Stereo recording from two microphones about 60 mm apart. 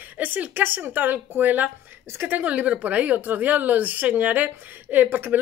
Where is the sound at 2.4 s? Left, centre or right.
Right.